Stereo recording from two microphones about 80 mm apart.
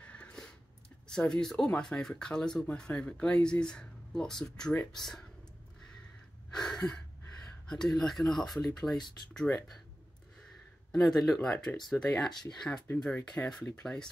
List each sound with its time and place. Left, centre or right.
0.0 s a sound: centre
1.0 s speech: centre
6.5 s gasp: centre
7.6 s speech: centre
9.5 s speech: left
10.9 s speech: centre